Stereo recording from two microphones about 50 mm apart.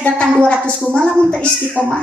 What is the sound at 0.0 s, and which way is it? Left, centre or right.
A woman's voice, left.